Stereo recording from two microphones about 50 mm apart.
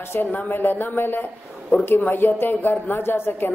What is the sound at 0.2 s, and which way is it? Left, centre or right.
A woman's voice, left.